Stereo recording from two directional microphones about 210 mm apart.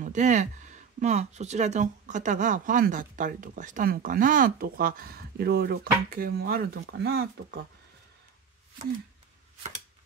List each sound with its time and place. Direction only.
0.0 s speech: 35° right (ahead or behind); by 7.6 s 50° right (ahead or behind)